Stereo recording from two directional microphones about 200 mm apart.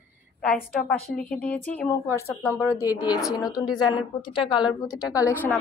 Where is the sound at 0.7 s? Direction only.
5° left (ahead or behind); by 5.0 s 20° left (ahead or behind).